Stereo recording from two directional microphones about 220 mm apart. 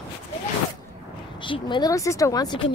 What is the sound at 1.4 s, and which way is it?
Speech, 20° left (ahead or behind).